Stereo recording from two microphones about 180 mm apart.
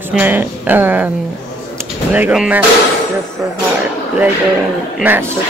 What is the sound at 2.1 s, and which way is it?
Speech, 10° right (ahead or behind).